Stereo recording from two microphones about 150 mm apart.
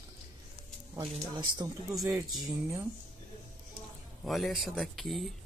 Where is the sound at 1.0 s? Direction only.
30° right (ahead or behind).